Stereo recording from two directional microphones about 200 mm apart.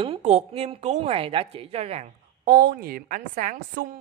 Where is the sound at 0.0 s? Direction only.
30° right (ahead or behind).